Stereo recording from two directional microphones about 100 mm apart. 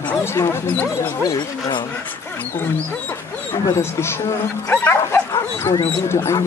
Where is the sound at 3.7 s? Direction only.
25° left (ahead or behind).